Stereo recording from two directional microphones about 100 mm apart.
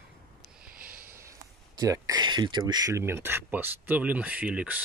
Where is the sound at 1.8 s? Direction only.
35° right (ahead or behind).